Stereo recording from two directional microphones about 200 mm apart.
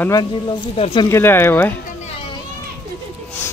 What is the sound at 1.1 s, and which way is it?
Speech, 10° left (ahead or behind).